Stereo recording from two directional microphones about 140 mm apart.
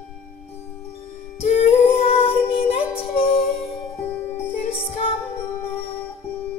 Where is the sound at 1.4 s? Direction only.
50° left (ahead or behind).